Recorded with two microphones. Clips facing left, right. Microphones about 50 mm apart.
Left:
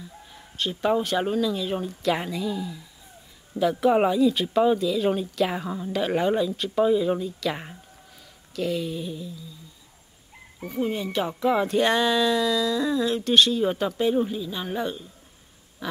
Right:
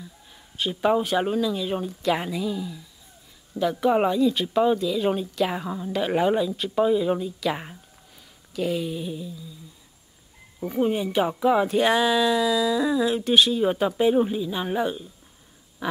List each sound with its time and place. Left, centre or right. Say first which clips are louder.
0.6 s speech: right 2 dB; centre
10.7 s speech: right 3 dB; right